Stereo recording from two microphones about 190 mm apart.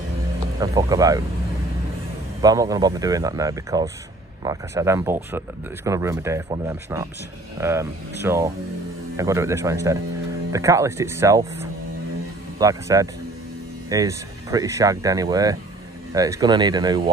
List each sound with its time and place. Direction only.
0.6 s speech: 20° right (ahead or behind)
2.4 s speech: 20° right (ahead or behind)